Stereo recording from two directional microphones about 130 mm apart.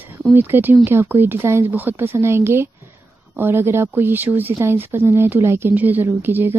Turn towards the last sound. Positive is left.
turn(degrees=-15)  # may be behind; listen again after turning